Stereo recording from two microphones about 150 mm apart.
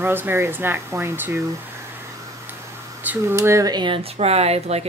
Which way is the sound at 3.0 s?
15° right (ahead or behind).